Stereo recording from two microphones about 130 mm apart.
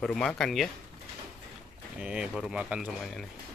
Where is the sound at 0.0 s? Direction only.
5° left (ahead or behind).